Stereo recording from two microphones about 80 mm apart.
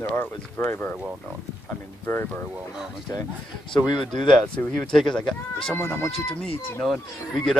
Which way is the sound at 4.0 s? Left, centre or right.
Centre.